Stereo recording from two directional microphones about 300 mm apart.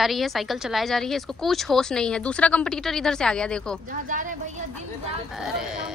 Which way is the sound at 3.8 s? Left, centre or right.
Right.